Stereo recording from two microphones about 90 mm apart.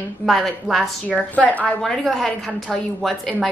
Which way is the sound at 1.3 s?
15° left (ahead or behind).